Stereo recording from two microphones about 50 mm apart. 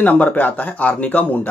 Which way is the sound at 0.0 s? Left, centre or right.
Left.